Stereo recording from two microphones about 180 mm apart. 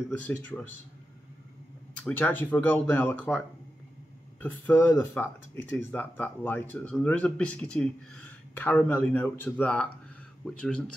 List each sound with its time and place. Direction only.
0.1 s speech: 10° left (ahead or behind)
2.0 s speech: 10° left (ahead or behind)